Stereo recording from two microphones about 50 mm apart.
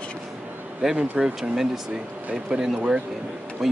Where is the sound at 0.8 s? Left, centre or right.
Centre.